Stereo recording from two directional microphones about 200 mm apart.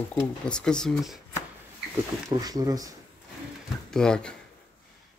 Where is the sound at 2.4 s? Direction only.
20° right (ahead or behind).